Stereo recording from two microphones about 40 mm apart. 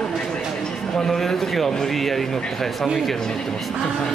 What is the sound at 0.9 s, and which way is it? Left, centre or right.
A man's voice, centre.